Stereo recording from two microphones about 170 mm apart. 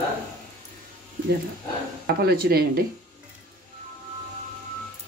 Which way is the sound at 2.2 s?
65° right (ahead or behind).